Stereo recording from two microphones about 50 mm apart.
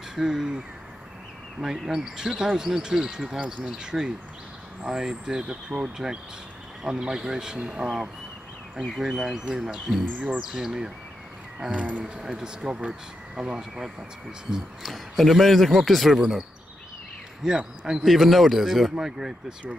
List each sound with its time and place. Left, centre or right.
0.1 s speech: centre
1.6 s speech: centre
11.7 s speech: right
12.0 s speech: centre
14.8 s a man's voice: centre
17.6 s speech: centre
18.0 s a man's voice: centre